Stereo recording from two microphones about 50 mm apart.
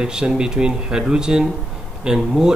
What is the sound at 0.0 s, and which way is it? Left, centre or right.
Speech, centre.